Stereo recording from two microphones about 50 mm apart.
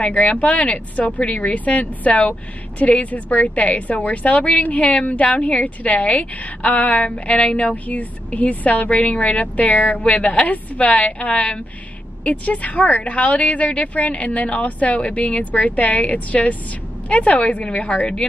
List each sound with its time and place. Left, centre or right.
0.0 s a woman's voice: left